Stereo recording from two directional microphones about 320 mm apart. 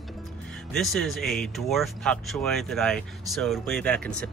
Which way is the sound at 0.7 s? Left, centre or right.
Centre.